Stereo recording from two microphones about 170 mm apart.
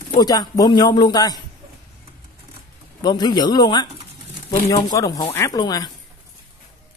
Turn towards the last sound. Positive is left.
turn(degrees=25)  # may be behind; listen again after turning